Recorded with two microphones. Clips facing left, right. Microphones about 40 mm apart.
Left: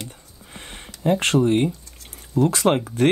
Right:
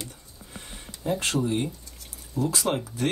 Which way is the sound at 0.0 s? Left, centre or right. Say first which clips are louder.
Left 3 dB; left.